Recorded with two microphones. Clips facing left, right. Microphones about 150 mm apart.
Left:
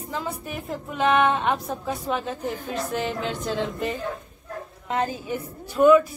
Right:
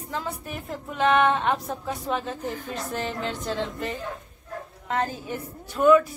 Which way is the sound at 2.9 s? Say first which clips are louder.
Left 1 dB; 5° left (ahead or behind).